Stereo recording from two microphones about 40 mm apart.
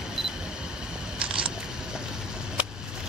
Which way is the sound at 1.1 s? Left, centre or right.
Right.